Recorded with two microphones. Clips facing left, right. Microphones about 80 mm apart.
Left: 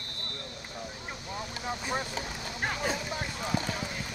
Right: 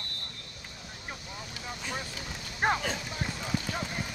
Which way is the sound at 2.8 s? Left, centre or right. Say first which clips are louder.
Left 2 dB; centre.